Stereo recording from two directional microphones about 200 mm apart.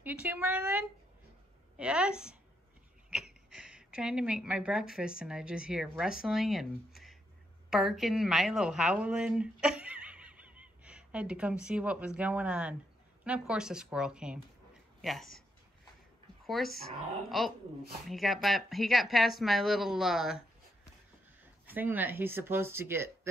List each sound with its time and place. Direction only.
0.0 s a woman's voice: 10° right (ahead or behind)
3.5 s a woman's voice: 5° right (ahead or behind)
16.4 s speech: centre (ahead or behind)
21.6 s speech: 10° right (ahead or behind)